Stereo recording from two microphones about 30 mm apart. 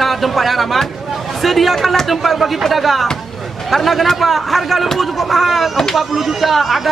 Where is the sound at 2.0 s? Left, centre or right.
Centre.